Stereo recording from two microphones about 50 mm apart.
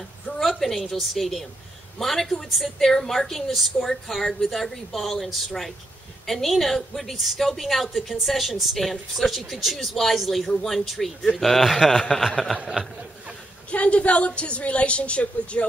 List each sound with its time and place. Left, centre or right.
0.4 s a woman's voice: centre
13.7 s a woman's voice: left